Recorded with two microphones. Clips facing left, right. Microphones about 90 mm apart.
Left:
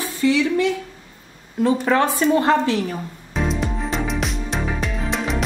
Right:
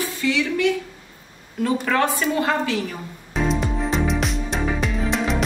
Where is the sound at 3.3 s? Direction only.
Centre (ahead or behind).